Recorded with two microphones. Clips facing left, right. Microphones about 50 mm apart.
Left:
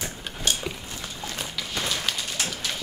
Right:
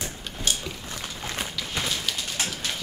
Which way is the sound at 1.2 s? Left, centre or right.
Right.